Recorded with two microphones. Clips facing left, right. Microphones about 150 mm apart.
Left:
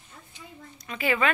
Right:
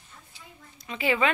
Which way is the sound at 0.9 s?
20° right (ahead or behind).